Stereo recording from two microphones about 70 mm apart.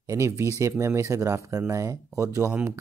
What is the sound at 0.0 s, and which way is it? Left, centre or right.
Speech, right.